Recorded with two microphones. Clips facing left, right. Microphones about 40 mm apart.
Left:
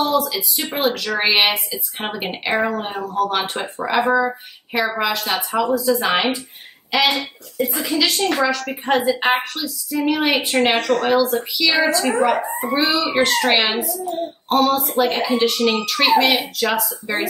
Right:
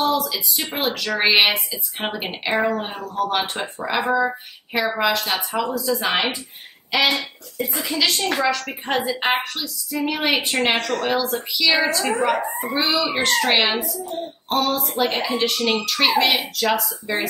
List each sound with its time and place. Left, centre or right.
0.0 s speech: centre